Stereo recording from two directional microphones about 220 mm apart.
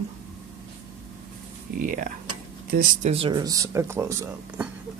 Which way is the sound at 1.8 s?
40° right (ahead or behind).